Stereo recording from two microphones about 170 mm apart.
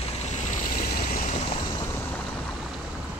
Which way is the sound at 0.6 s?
50° left (ahead or behind).